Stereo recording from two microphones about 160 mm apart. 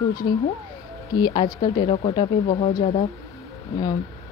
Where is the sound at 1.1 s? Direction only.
25° left (ahead or behind).